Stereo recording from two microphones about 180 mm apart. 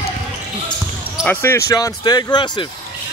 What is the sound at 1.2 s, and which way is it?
Speech, 10° left (ahead or behind).